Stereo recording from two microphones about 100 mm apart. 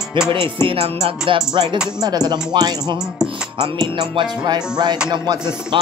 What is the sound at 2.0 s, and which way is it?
Speech, 40° right (ahead or behind).